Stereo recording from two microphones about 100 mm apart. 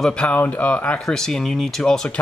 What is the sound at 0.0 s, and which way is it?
Speech, 10° left (ahead or behind).